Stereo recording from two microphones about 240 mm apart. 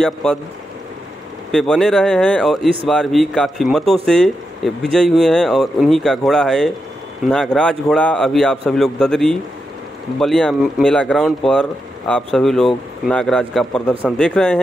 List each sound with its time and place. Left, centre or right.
0.0 s speech: centre
1.5 s speech: centre